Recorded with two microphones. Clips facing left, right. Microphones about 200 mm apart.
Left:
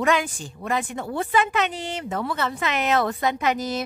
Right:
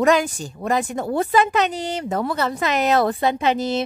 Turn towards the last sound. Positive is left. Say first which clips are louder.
# right 4 dB
turn(degrees=-25)  # may be behind; listen again after turning